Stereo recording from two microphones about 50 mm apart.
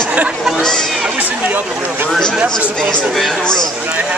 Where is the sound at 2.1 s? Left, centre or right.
Centre.